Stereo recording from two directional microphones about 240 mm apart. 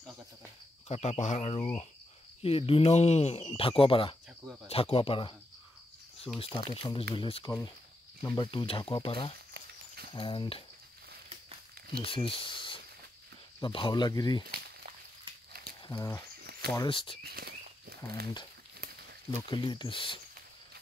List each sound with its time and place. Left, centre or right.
0.8 s speech: left
6.3 s speech: left
12.0 s speech: left
15.9 s speech: centre
16.3 s a sound: right
16.7 s speech: centre
17.2 s walk: right
18.2 s speech: centre
19.5 s speech: centre